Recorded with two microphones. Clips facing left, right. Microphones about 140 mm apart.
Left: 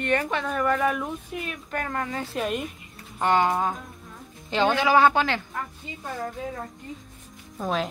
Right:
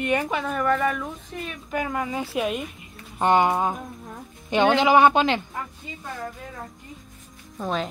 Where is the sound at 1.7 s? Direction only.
10° right (ahead or behind).